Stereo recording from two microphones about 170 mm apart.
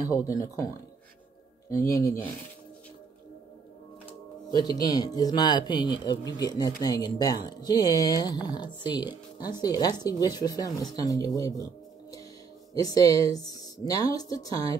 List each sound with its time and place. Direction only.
0.3 s speech: 20° left (ahead or behind)
1.7 s speech: 20° left (ahead or behind)
4.6 s speech: 20° left (ahead or behind)